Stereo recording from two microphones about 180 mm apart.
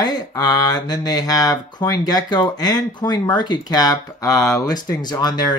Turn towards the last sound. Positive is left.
turn(degrees=20)  # may be behind; listen again after turning